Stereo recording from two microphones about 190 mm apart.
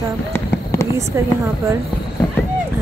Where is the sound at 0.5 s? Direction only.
15° left (ahead or behind).